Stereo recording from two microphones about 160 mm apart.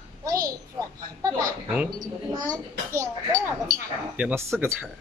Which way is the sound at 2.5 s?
20° right (ahead or behind).